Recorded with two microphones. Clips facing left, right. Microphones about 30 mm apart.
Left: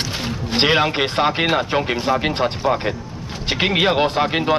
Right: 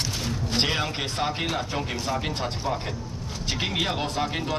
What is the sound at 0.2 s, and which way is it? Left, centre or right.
Speech, left.